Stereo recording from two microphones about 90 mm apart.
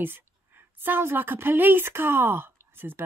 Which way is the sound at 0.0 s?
25° right (ahead or behind).